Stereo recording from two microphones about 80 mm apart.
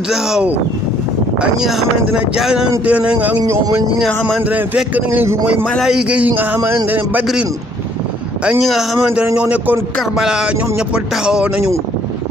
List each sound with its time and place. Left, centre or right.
0.1 s a man's voice: centre
4.4 s speech: right
5.8 s a man's voice: centre; by 7.2 s right
8.6 s a man's voice: centre